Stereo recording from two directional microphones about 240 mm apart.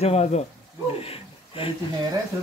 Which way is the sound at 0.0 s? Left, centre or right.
Left.